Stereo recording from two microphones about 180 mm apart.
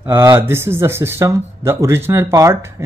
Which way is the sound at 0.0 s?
15° right (ahead or behind).